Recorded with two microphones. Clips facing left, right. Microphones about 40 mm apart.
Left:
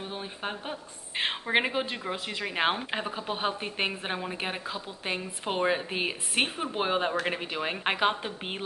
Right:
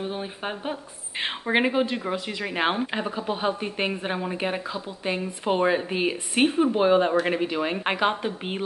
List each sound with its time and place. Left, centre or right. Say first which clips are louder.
0.0 s a woman's voice: right 5 dB; centre